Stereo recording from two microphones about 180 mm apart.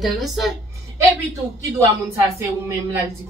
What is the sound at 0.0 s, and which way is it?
Speech, centre (ahead or behind).